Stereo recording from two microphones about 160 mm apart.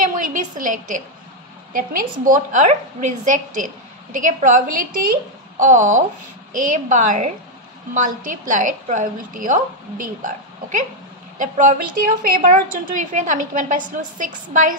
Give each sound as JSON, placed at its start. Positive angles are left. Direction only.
{"t": 0.0, "sound": "a woman's voice", "side_deg": -60}